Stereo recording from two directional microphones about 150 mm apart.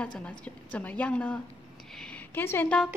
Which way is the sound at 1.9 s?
5° left (ahead or behind).